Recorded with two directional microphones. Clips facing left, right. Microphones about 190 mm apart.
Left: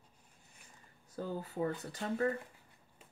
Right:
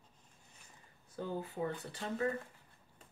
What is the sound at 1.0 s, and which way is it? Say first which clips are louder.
Speech: even; 40° left (ahead or behind).